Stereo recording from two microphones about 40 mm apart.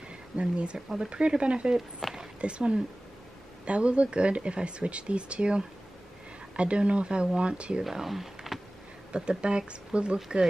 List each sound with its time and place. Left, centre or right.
0.4 s speech: right
2.0 s a sound: centre
2.4 s speech: right
7.9 s speech: centre
9.1 s speech: right